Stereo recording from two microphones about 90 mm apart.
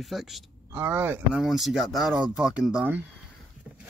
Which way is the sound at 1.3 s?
5° right (ahead or behind).